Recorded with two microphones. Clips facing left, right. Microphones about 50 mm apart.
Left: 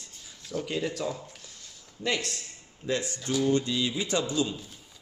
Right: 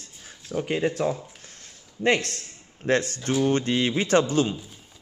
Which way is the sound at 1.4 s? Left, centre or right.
Right.